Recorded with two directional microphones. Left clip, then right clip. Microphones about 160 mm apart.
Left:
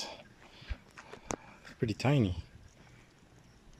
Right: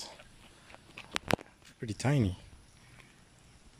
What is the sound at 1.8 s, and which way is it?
Speech, 5° left (ahead or behind).